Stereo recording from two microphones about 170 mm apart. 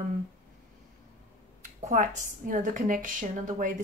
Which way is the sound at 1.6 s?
45° right (ahead or behind).